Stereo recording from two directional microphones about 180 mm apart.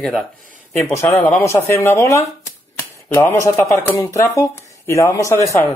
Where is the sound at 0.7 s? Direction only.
15° left (ahead or behind).